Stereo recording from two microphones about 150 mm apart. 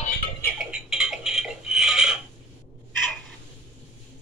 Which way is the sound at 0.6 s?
5° right (ahead or behind).